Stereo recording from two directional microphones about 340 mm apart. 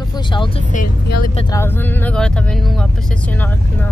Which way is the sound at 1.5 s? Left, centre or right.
Centre.